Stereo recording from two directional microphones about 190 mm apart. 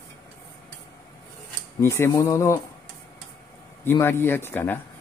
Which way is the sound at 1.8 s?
15° left (ahead or behind).